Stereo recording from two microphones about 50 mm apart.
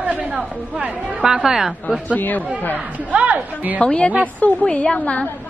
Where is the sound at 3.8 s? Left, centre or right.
Left.